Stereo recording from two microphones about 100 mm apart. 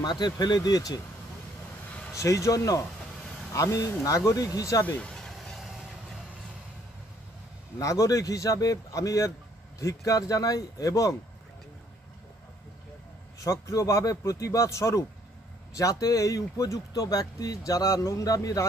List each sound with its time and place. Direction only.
0.0 s speech: 45° left (ahead or behind)
2.1 s speech: 35° left (ahead or behind)
4.8 s vehicle: 10° left (ahead or behind)
7.8 s speech: 35° left (ahead or behind)
13.4 s speech: 35° left (ahead or behind)